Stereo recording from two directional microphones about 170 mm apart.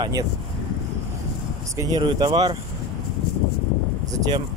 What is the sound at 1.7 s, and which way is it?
Speech, 20° right (ahead or behind).